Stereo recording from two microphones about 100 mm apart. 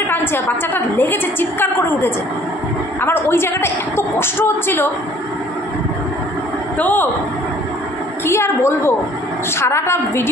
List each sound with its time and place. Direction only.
0.1 s a woman's voice: 20° left (ahead or behind)
6.8 s speech: 15° left (ahead or behind)
8.3 s a woman's voice: 25° left (ahead or behind)